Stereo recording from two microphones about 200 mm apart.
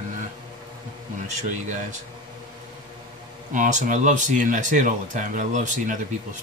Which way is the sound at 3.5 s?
40° right (ahead or behind).